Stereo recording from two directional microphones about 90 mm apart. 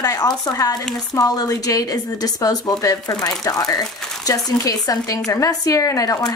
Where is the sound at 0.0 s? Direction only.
45° left (ahead or behind).